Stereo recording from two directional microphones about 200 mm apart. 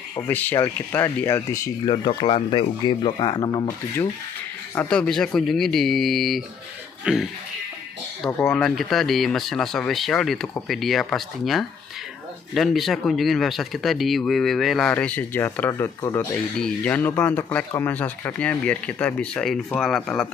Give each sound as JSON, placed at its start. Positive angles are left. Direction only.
{"t": 0.3, "sound": "speech", "side_deg": 10}
{"t": 4.7, "sound": "speech", "side_deg": 5}
{"t": 8.2, "sound": "speech", "side_deg": 10}
{"t": 16.5, "sound": "speech", "side_deg": 5}